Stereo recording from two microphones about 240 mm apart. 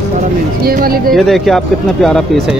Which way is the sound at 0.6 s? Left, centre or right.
Right.